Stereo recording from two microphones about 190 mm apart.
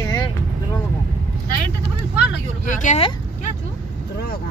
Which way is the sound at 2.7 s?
40° left (ahead or behind).